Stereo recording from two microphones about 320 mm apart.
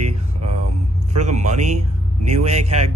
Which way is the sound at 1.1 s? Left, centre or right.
Right.